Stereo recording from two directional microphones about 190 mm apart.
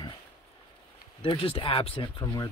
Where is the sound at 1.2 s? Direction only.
30° left (ahead or behind).